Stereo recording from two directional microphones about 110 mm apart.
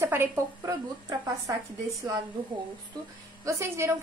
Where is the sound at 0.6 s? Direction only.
35° right (ahead or behind).